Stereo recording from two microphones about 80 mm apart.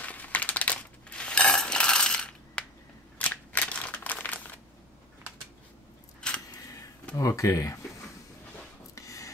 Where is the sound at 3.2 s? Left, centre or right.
Centre.